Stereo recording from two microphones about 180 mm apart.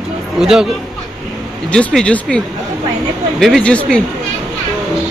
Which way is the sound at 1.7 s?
5° left (ahead or behind).